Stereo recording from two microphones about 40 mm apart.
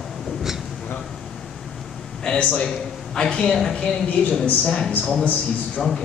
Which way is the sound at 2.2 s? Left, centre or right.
Centre.